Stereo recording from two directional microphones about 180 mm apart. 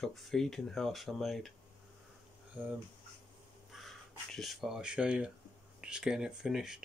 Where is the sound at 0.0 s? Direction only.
Centre (ahead or behind).